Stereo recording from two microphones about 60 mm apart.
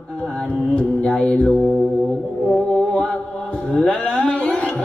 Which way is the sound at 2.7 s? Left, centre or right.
Centre.